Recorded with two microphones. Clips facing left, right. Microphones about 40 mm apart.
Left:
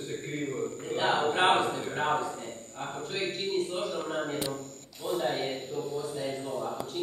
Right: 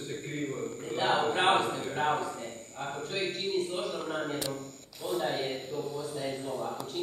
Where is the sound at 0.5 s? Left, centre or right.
Left.